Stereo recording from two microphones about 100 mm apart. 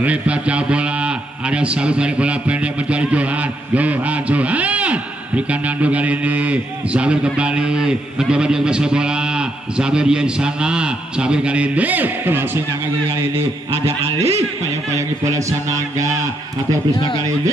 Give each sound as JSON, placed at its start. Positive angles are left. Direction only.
{"t": 0.0, "sound": "a man's voice", "side_deg": -15}
{"t": 13.8, "sound": "a man's voice", "side_deg": -90}
{"t": 14.9, "sound": "speech", "side_deg": -30}